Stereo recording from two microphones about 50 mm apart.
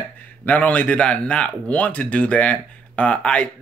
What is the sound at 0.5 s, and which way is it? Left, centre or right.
Speech, left.